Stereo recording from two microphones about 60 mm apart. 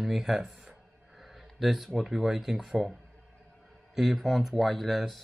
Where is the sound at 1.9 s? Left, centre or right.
Centre.